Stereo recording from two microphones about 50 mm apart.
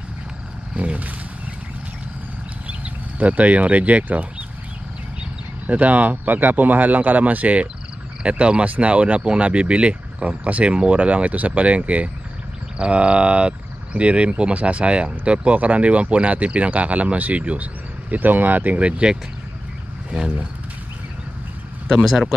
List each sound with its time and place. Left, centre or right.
0.7 s speech: right
2.8 s speech: right
5.7 s speech: right
22.0 s speech: centre